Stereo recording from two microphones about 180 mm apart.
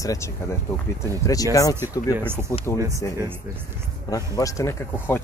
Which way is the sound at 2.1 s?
10° right (ahead or behind).